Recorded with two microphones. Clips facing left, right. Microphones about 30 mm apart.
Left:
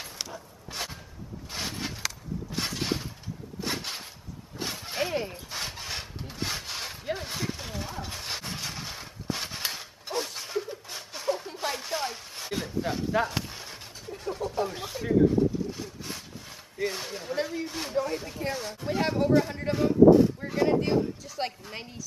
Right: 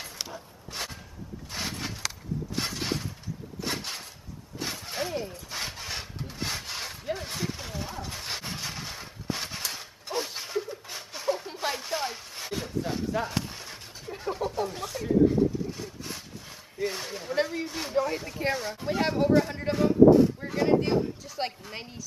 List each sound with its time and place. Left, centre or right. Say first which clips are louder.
0.2 s a sound: even; centre
5.1 s rub: left 2 dB; left
5.5 s wood: even; centre
9.7 s a sound: even; centre
10.2 s a sound: even; centre
13.1 s speech: left 5 dB; centre
14.0 s a sound: right 2 dB; centre
14.5 s speech: left 1 dB; centre
15.7 s vehicle: even; centre
16.7 s speech: even; centre
17.4 s speech: right 3 dB; centre
17.6 s speech: right 1 dB; centre